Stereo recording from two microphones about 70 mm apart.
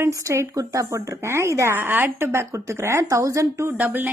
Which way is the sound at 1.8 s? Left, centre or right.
Right.